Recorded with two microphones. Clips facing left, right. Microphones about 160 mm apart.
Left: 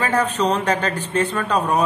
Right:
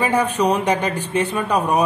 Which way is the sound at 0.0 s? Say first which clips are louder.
Right 2 dB; 10° right (ahead or behind).